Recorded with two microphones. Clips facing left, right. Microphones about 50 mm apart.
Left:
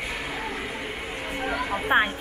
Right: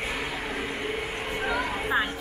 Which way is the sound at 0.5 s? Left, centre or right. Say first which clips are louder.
Right 2 dB; centre.